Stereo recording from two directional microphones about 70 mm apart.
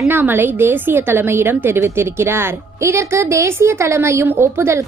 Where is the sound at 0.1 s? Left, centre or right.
Right.